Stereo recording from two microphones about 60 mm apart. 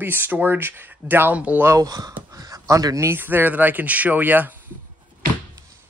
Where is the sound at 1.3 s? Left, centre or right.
Right.